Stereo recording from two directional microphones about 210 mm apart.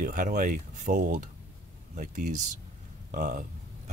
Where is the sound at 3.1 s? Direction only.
40° right (ahead or behind).